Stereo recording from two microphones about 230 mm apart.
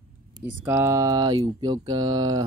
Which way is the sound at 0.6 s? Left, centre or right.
Centre.